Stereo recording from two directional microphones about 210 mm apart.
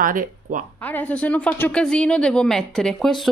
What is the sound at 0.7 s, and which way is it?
Speech, 5° left (ahead or behind).